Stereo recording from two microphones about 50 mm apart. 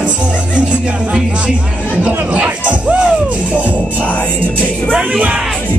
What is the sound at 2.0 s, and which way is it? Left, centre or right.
Music, right.